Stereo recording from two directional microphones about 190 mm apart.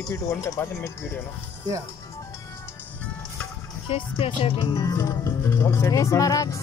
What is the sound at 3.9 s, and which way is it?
Speech, 30° left (ahead or behind).